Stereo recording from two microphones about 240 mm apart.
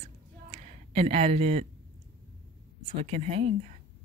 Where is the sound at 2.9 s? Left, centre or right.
Right.